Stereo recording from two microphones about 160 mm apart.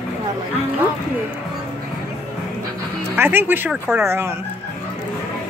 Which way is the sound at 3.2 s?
15° right (ahead or behind).